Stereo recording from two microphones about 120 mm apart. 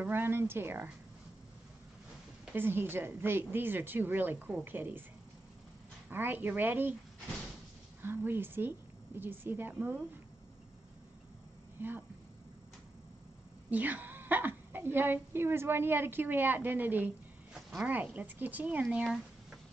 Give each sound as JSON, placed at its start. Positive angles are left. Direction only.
{"t": 0.0, "sound": "speech", "side_deg": -15}
{"t": 2.5, "sound": "a woman's voice", "side_deg": -15}
{"t": 6.0, "sound": "a woman's voice", "side_deg": -15}
{"t": 8.0, "sound": "a woman's voice", "side_deg": -15}
{"t": 11.8, "sound": "a woman's voice", "side_deg": -15}
{"t": 13.7, "sound": "a woman's voice", "side_deg": -15}
{"t": 17.6, "sound": "a woman's voice", "side_deg": -5}
{"t": 19.0, "sound": "a sound", "side_deg": -5}